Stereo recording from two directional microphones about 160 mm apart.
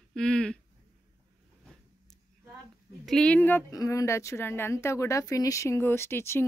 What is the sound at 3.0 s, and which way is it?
Speech, 5° left (ahead or behind).